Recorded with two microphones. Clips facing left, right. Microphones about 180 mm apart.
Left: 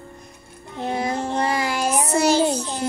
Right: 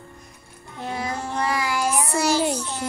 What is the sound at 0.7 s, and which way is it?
Child singing, 20° left (ahead or behind).